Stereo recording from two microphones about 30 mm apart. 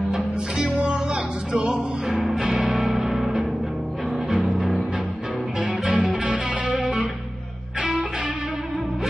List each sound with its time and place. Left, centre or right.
0.8 s music: right
3.1 s music: centre
4.4 s music: right
5.9 s music: right